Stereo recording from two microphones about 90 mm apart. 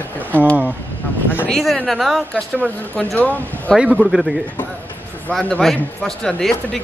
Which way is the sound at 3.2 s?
15° left (ahead or behind).